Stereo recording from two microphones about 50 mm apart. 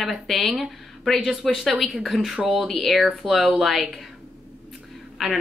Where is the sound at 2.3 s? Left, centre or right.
Centre.